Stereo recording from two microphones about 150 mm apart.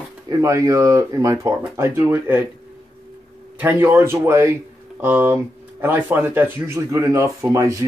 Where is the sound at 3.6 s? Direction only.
15° right (ahead or behind).